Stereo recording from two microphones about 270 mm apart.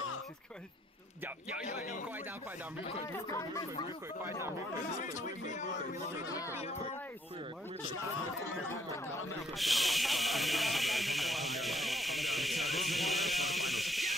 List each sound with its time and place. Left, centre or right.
1.7 s speech: left
3.1 s speech: centre
4.9 s speech: left
9.6 s snake: centre